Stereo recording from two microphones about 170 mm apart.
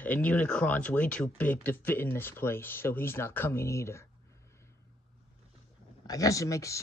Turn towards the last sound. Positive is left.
turn(degrees=20)  # may be behind; listen again after turning